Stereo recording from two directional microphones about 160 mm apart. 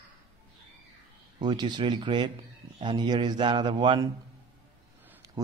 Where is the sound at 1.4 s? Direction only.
25° right (ahead or behind).